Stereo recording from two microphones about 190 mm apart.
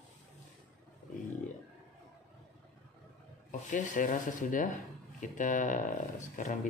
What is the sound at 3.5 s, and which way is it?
Speech, 40° left (ahead or behind).